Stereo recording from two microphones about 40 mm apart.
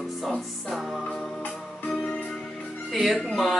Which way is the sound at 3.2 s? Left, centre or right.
Centre.